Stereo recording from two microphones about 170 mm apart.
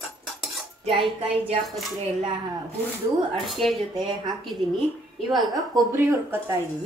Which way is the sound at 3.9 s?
25° right (ahead or behind).